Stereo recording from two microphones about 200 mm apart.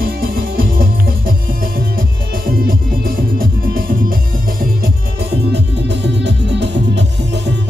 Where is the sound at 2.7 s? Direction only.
45° right (ahead or behind).